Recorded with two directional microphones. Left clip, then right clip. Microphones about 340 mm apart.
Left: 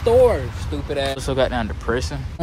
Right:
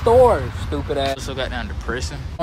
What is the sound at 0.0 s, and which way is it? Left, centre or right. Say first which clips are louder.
Speech: right 2 dB; centre.